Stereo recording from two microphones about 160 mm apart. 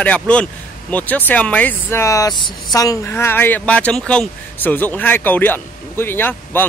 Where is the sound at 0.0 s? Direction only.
5° left (ahead or behind).